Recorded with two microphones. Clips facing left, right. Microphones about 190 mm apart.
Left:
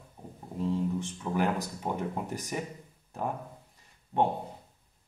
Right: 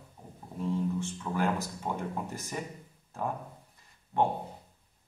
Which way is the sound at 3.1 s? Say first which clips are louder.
Left 1 dB; 15° left (ahead or behind).